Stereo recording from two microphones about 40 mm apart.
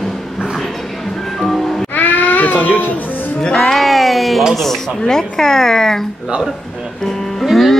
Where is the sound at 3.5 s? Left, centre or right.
Centre.